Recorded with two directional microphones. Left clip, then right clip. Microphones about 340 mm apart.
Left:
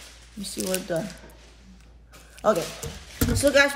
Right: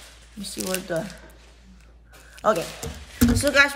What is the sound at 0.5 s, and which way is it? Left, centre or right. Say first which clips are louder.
Speech: even; centre.